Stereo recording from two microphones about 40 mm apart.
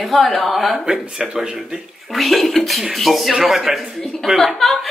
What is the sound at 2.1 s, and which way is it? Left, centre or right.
A woman's voice, centre.